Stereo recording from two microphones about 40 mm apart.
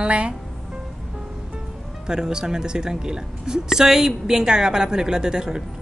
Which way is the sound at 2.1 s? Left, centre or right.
Centre.